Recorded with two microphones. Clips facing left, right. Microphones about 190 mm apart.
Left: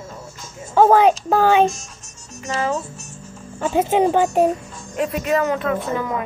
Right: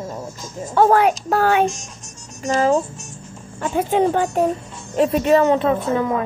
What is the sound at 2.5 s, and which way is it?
Speech, 30° right (ahead or behind).